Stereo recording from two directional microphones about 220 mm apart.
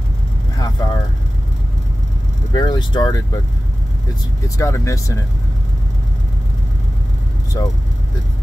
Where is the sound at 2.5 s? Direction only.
20° left (ahead or behind).